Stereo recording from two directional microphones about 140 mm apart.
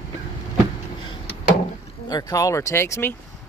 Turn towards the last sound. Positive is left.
turn(degrees=20)  # may be behind; listen again after turning